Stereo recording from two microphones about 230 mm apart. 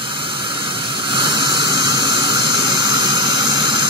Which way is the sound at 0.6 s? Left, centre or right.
Right.